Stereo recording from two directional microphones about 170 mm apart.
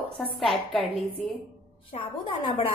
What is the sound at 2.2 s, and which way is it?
Speech, 30° left (ahead or behind).